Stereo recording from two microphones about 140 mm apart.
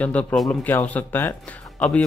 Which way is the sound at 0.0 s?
10° left (ahead or behind).